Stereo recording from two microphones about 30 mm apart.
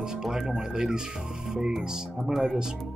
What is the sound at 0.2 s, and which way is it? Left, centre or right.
Speech, centre.